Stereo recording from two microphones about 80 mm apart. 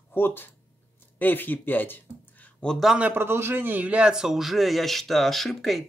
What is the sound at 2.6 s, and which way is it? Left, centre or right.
Speech, centre.